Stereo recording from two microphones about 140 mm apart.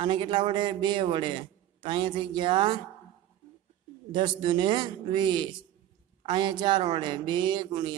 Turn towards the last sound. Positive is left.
turn(degrees=-30)  # may be behind; listen again after turning